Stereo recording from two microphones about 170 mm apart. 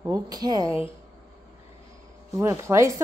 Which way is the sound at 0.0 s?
20° right (ahead or behind).